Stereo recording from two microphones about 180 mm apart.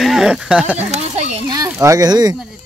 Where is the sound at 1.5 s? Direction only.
15° right (ahead or behind).